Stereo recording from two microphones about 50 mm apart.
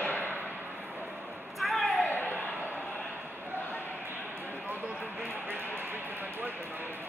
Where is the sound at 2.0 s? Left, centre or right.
Left.